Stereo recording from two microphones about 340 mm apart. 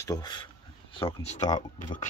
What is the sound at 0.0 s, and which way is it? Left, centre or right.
Speech, centre.